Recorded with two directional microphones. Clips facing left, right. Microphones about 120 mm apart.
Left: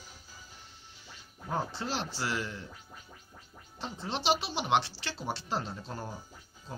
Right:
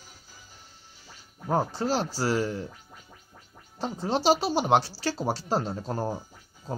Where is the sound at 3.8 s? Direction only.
40° right (ahead or behind).